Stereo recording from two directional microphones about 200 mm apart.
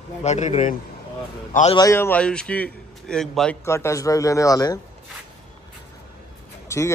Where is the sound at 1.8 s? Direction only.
15° left (ahead or behind).